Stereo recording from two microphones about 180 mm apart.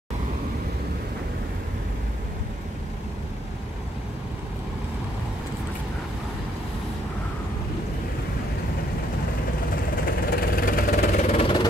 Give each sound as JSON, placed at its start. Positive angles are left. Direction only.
{"t": 10.0, "sound": "vehicle", "side_deg": 55}
{"t": 11.2, "sound": "vehicle", "side_deg": 30}